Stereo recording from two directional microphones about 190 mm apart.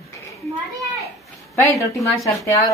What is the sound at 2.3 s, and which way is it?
Speech, 15° left (ahead or behind).